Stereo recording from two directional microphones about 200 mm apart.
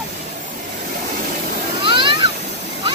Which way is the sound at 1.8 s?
25° right (ahead or behind).